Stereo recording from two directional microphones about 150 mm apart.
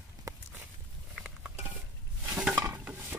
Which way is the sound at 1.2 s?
10° right (ahead or behind).